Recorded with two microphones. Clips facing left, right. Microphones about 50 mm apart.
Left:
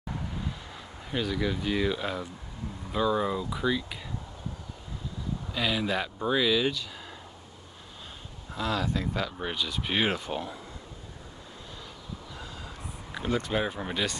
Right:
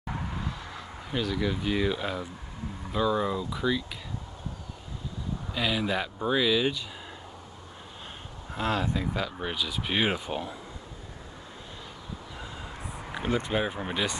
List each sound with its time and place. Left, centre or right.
1.1 s speech: centre
5.5 s speech: centre
8.5 s speech: right
8.9 s speech: centre
12.4 s train: right
13.1 s a sound: right
13.5 s speech: centre